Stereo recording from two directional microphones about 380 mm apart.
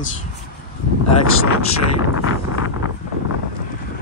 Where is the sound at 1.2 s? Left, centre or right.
Left.